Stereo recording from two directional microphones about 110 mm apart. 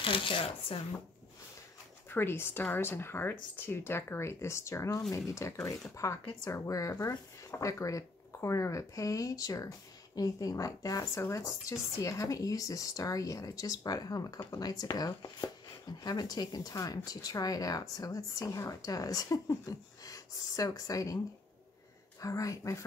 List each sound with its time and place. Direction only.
0.0 s speech: 50° left (ahead or behind)
2.0 s speech: 20° left (ahead or behind)
22.2 s speech: 30° left (ahead or behind)